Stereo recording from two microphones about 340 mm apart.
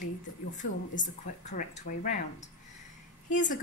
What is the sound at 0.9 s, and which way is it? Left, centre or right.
A woman's voice, left.